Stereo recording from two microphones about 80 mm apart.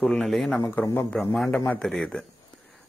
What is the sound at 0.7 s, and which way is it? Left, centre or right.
Speech, centre.